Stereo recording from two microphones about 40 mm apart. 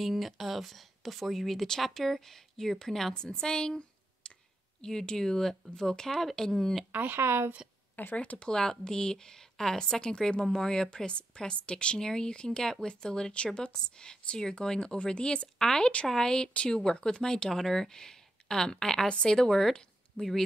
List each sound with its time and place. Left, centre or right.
0.0 s speech: centre
6.9 s speech: right
7.2 s a woman's voice: right
7.9 s a sound: left
8.2 s a woman's voice: left
8.5 s a woman's voice: centre
19.0 s a woman's voice: left
19.3 s speech: centre